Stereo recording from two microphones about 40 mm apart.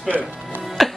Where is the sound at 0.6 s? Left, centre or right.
Centre.